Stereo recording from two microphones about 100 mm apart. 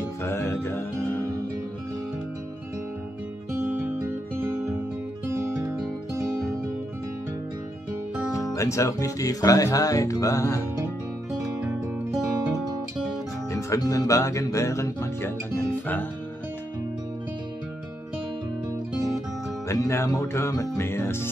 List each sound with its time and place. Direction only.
0.2 s music: 25° left (ahead or behind)
8.5 s speech: 30° left (ahead or behind)
13.5 s speech: 30° left (ahead or behind)
19.7 s music: 30° left (ahead or behind)